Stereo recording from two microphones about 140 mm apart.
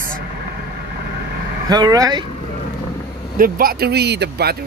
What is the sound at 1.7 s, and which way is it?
Speech, 30° right (ahead or behind).